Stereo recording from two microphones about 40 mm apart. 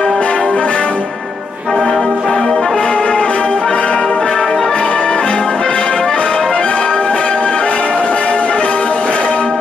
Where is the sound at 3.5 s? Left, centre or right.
Left.